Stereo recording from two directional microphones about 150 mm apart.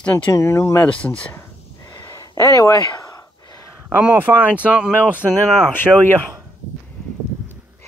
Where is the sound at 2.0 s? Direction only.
20° left (ahead or behind).